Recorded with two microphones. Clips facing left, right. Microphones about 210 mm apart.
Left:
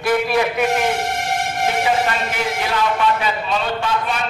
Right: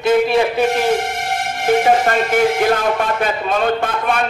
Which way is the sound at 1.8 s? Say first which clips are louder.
Right 5 dB; 45° right (ahead or behind).